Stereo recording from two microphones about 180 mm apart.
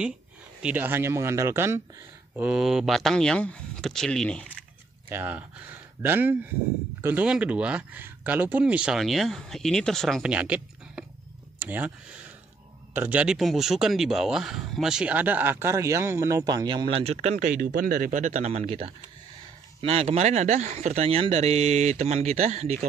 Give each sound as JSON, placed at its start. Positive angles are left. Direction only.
{"t": 0.6, "sound": "speech", "side_deg": -10}
{"t": 5.1, "sound": "speech", "side_deg": -10}